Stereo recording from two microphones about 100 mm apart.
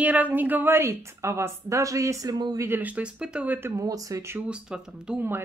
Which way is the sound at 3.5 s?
25° right (ahead or behind).